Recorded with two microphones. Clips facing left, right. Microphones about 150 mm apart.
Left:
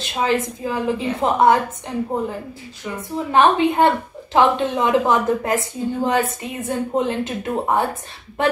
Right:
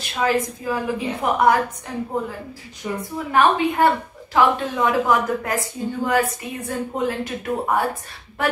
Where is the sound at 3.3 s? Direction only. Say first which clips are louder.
Left 2 dB; 20° left (ahead or behind).